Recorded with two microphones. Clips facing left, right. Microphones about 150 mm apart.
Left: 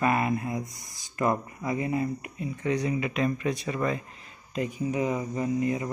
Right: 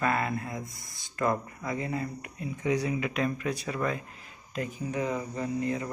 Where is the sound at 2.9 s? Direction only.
Centre (ahead or behind).